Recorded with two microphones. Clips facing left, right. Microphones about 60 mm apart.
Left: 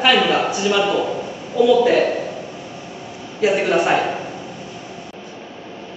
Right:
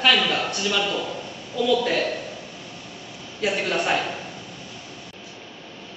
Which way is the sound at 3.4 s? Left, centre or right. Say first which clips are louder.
Left 8 dB; centre.